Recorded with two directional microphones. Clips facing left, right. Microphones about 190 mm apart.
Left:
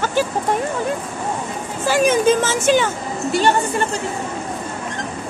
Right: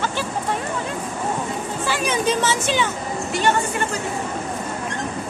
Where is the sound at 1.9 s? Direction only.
45° left (ahead or behind).